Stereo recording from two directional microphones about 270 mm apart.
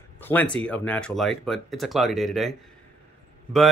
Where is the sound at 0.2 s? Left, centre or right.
Centre.